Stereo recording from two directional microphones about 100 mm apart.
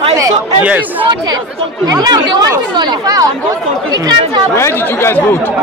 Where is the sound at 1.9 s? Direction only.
40° right (ahead or behind).